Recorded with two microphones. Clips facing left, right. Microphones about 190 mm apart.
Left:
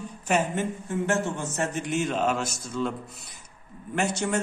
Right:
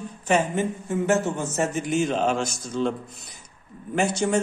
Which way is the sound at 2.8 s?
30° right (ahead or behind).